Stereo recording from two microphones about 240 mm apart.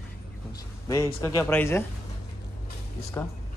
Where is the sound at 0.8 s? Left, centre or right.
Centre.